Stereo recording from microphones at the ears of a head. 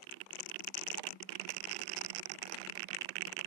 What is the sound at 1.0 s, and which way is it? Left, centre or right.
Vehicle, right.